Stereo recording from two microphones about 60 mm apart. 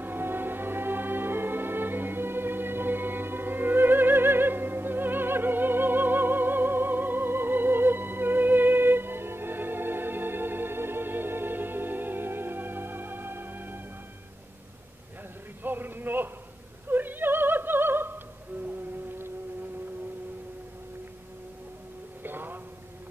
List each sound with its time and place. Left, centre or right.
0.0 s music: right
15.6 s a sound: right
16.9 s opera: right
22.2 s music: right